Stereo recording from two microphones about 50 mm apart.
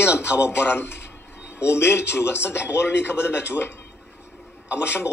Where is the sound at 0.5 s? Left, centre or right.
Left.